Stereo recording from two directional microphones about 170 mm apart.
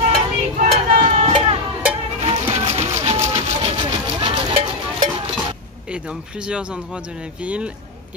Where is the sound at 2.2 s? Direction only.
35° right (ahead or behind).